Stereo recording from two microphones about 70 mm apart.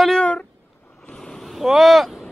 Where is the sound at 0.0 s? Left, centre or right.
Centre.